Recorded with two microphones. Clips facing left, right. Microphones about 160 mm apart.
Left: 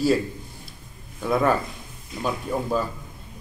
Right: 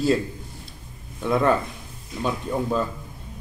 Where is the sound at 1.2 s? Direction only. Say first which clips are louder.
Right 1 dB; 5° left (ahead or behind).